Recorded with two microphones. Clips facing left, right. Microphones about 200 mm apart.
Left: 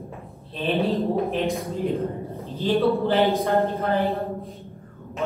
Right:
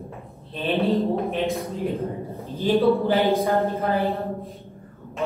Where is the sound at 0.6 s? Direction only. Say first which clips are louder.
Right 1 dB; centre (ahead or behind).